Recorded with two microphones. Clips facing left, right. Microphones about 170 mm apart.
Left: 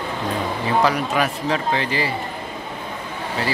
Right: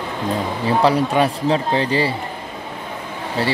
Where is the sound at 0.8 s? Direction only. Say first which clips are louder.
Right 4 dB; 30° right (ahead or behind).